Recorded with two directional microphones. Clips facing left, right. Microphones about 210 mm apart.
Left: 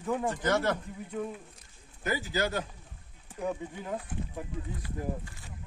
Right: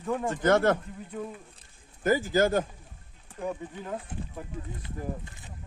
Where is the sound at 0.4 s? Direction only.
50° right (ahead or behind).